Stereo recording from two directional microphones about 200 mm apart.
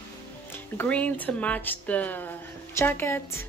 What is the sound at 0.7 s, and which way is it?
A woman's voice, 5° left (ahead or behind).